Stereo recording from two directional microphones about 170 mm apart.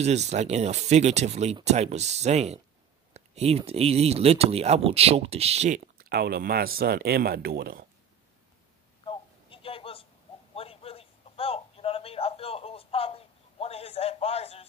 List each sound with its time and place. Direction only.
0.0 s speech: 40° right (ahead or behind)
5.9 s speech: 65° right (ahead or behind)
9.0 s a sound: 30° left (ahead or behind)